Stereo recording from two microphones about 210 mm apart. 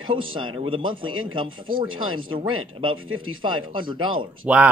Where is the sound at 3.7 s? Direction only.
25° right (ahead or behind).